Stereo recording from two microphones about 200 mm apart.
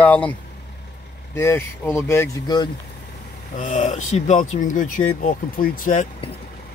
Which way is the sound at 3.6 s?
40° left (ahead or behind).